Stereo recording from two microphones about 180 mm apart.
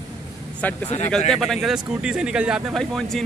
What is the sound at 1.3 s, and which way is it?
Speech, centre (ahead or behind).